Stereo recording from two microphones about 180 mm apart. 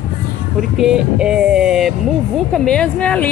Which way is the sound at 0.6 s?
5° right (ahead or behind).